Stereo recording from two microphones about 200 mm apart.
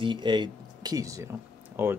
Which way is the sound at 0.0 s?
25° right (ahead or behind).